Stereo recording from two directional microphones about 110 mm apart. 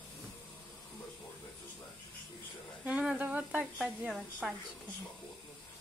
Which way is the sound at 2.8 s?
10° right (ahead or behind).